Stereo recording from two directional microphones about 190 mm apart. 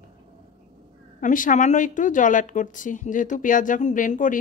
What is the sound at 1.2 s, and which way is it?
Speech, 45° left (ahead or behind).